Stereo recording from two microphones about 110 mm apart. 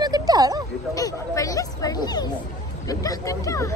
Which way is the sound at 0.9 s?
30° left (ahead or behind).